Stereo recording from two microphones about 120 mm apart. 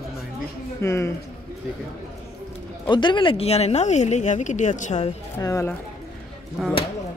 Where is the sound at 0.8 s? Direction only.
25° left (ahead or behind).